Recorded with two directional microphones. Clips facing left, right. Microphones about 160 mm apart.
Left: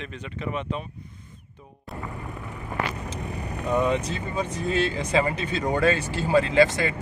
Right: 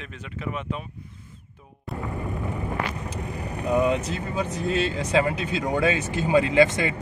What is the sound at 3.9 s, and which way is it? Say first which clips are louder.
Speech: even; centre (ahead or behind).